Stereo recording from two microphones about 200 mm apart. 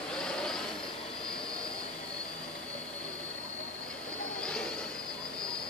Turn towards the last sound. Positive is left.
turn(degrees=5)  # may be behind; listen again after turning